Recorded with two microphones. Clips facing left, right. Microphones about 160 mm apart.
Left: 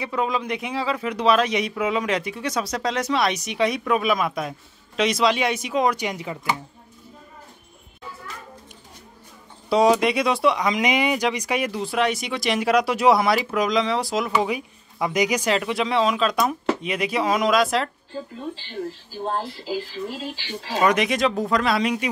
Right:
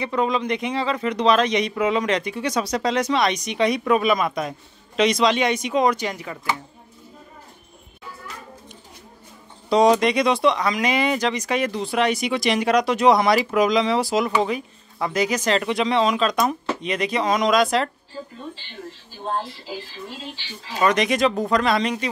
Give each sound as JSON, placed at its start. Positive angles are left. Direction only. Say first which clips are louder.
{"t": 0.0, "sound": "speech", "louder": "right 3 dB", "side_deg": 5}
{"t": 5.9, "sound": "speech", "louder": "even", "side_deg": 15}
{"t": 9.7, "sound": "speech", "louder": "right 1 dB", "side_deg": 5}
{"t": 20.4, "sound": "speech", "louder": "left 9 dB", "side_deg": 80}
{"t": 20.8, "sound": "speech", "louder": "right 1 dB", "side_deg": 5}